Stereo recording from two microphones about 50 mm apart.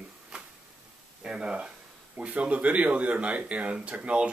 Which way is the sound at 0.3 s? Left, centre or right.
Centre.